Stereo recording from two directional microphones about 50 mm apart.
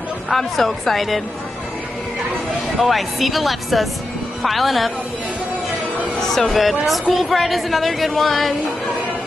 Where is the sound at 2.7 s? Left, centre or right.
Centre.